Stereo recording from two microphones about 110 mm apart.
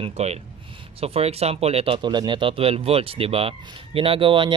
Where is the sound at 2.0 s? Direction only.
45° right (ahead or behind).